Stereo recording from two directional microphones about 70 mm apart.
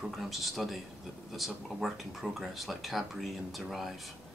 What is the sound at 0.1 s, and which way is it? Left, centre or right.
Speech, centre.